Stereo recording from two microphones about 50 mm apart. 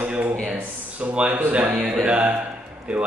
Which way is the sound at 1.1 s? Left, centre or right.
Right.